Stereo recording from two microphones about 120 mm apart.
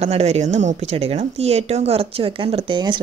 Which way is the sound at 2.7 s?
40° right (ahead or behind).